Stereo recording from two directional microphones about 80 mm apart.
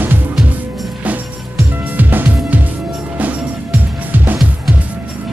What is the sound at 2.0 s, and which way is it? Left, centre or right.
Music, right.